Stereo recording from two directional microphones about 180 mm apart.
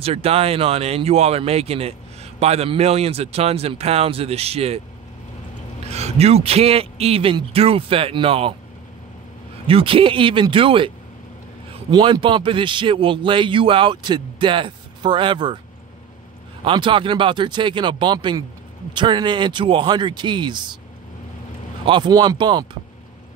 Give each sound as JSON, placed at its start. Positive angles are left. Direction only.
{"t": 0.0, "sound": "a man's voice", "side_deg": -35}
{"t": 5.9, "sound": "a man's voice", "side_deg": -35}
{"t": 9.7, "sound": "a man's voice", "side_deg": -30}
{"t": 16.6, "sound": "a man's voice", "side_deg": -25}
{"t": 21.8, "sound": "a man's voice", "side_deg": -25}